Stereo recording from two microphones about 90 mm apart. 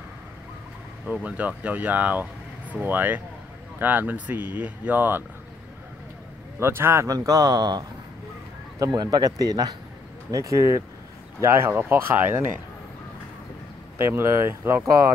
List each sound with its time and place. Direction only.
1.0 s speech: 15° right (ahead or behind)
6.6 s speech: 30° right (ahead or behind)
7.2 s speech: 45° right (ahead or behind); by 12.4 s 25° right (ahead or behind)
13.9 s speech: 25° right (ahead or behind)